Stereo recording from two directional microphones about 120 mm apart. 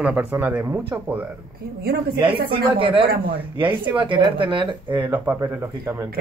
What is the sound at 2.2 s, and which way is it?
Speech, 45° right (ahead or behind).